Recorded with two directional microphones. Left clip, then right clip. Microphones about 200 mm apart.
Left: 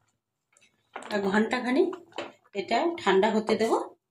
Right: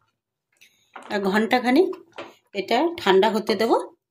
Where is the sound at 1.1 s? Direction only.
50° right (ahead or behind).